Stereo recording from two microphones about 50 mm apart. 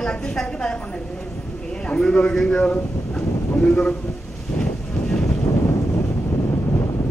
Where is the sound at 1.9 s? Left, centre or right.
Centre.